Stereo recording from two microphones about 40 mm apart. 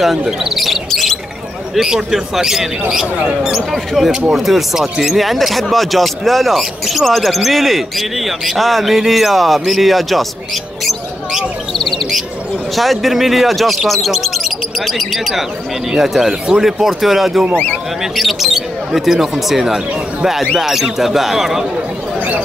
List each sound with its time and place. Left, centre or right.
0.0 s speech: centre
0.6 s a sound: centre
1.8 s speech: centre
3.7 s speech: centre
11.8 s bird: centre
12.7 s speech: centre